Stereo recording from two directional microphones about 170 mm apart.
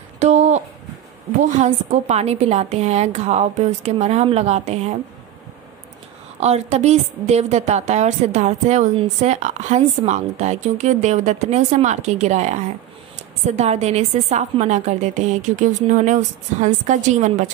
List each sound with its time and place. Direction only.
0.2 s a sound: 40° right (ahead or behind)
1.4 s a woman's voice: 45° right (ahead or behind)
6.4 s a woman's voice: 40° right (ahead or behind)